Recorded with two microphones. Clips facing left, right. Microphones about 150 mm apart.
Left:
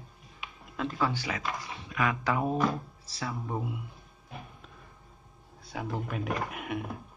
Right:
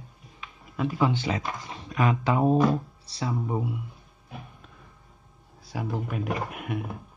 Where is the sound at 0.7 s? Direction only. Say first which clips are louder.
Right 5 dB; 10° right (ahead or behind).